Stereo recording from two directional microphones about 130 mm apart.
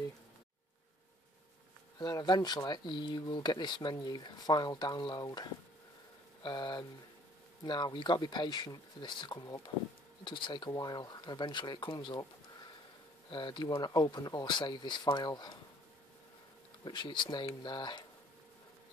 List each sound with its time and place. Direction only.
2.0 s speech: 30° left (ahead or behind)
13.3 s speech: 35° left (ahead or behind)
16.8 s speech: 35° left (ahead or behind)